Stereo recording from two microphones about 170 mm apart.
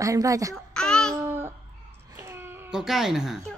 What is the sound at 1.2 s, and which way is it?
Babbling, 15° right (ahead or behind).